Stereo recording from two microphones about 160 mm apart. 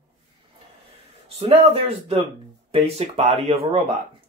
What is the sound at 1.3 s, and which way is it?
Speech, 35° right (ahead or behind).